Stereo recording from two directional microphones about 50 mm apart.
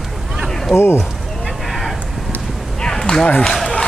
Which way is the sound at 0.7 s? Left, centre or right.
Left.